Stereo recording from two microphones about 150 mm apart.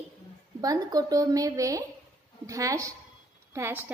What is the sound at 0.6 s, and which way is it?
A woman's voice, 25° right (ahead or behind).